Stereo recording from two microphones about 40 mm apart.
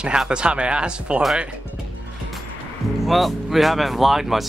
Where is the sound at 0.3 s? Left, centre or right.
Right.